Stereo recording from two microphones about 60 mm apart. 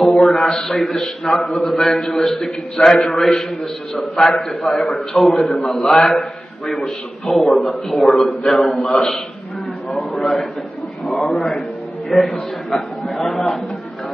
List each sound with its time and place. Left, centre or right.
0.0 s a man's voice: centre
9.8 s a sound: centre
11.1 s a man's voice: centre